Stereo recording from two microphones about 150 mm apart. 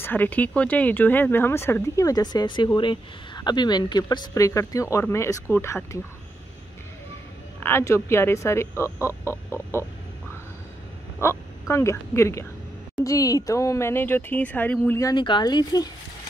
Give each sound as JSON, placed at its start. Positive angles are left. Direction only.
{"t": 0.0, "sound": "speech", "side_deg": 10}
{"t": 7.6, "sound": "speech", "side_deg": 15}
{"t": 11.1, "sound": "speech", "side_deg": 15}
{"t": 15.0, "sound": "speech", "side_deg": 30}